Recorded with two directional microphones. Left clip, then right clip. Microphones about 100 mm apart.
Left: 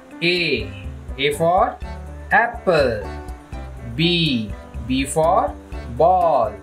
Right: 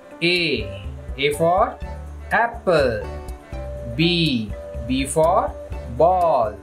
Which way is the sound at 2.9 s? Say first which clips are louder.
Even; 5° right (ahead or behind).